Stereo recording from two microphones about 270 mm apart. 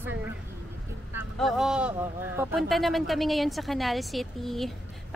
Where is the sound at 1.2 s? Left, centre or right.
Centre.